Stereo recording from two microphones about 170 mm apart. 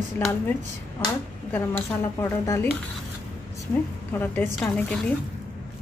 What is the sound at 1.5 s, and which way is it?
Speech, 15° left (ahead or behind).